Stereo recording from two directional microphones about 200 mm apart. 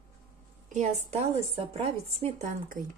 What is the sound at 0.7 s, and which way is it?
A woman's voice, 35° right (ahead or behind).